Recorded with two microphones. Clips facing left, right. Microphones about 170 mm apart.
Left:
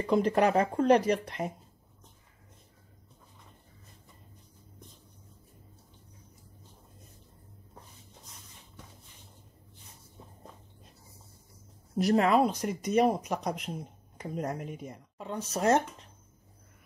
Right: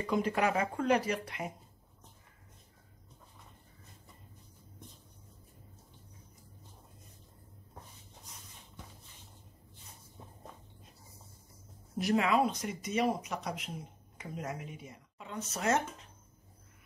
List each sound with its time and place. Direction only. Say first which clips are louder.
0.0 s speech: left 6 dB; 35° left (ahead or behind)
12.0 s speech: left 5 dB; 40° left (ahead or behind)